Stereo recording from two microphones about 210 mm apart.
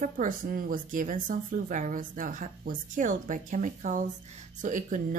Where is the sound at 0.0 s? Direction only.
40° right (ahead or behind).